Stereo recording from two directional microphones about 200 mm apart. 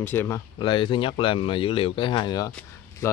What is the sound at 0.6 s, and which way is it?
Speech, 25° left (ahead or behind).